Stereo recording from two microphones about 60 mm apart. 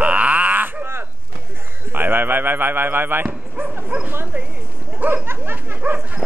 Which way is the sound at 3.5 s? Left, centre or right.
Right.